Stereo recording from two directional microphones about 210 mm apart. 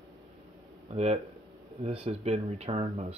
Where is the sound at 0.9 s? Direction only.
30° right (ahead or behind).